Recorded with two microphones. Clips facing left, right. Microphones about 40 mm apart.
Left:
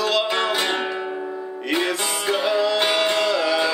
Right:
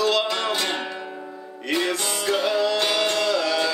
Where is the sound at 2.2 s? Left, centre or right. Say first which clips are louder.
Left 1 dB; centre.